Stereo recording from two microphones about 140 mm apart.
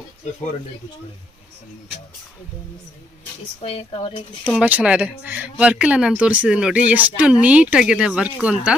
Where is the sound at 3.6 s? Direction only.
45° left (ahead or behind).